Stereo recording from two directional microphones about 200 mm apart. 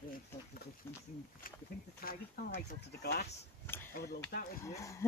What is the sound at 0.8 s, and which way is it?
Speech, 10° left (ahead or behind).